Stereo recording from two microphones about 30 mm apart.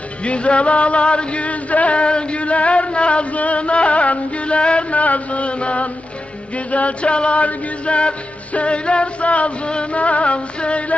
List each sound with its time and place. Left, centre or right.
0.2 s music: left
2.0 s music: left
4.9 s music: left